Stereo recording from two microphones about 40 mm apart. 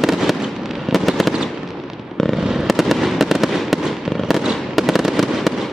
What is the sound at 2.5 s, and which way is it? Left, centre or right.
Fireworks, centre.